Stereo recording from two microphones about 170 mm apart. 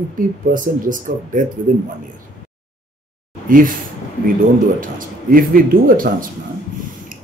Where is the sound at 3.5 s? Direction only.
55° right (ahead or behind).